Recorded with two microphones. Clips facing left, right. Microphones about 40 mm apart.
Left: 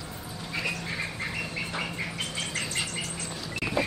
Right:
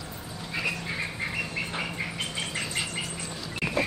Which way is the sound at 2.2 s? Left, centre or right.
Centre.